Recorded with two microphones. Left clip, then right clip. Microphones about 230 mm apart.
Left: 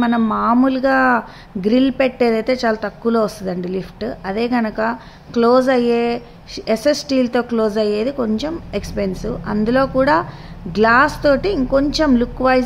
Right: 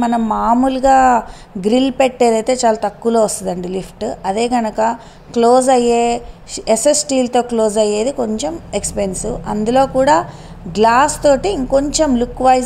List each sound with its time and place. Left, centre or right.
0.0 s speech: centre